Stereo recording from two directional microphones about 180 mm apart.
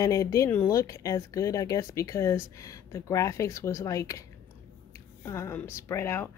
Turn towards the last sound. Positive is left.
turn(degrees=15)  # may be behind; listen again after turning